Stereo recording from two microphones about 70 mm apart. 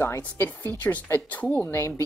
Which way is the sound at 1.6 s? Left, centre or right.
Left.